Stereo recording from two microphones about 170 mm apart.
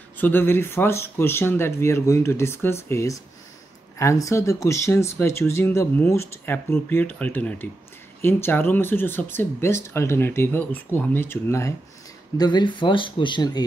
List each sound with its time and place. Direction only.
0.2 s speech: 10° left (ahead or behind)
12.4 s speech: 25° left (ahead or behind)